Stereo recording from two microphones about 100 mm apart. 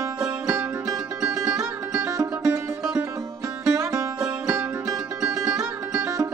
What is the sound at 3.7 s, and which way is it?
Music, 30° right (ahead or behind).